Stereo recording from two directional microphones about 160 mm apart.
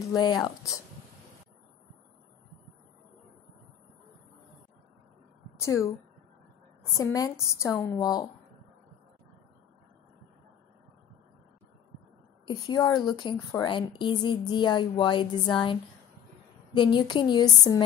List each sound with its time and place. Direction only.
0.0 s a woman's voice: 25° left (ahead or behind)
5.6 s a woman's voice: 20° left (ahead or behind)
12.4 s a woman's voice: 25° left (ahead or behind)